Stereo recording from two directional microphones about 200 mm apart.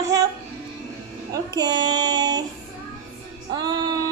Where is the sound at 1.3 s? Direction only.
20° right (ahead or behind).